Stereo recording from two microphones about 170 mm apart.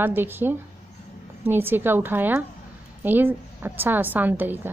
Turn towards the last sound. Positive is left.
turn(degrees=-10)  # may be behind; listen again after turning